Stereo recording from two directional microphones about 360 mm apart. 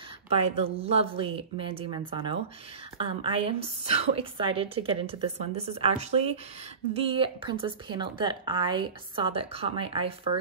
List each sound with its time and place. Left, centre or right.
0.3 s speech: centre